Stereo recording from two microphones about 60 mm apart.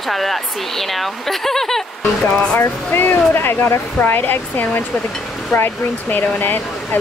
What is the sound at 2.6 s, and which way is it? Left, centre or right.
Speech, left.